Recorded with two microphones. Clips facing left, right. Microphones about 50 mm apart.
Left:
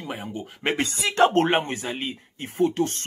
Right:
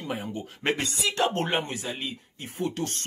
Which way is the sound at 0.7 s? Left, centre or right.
Left.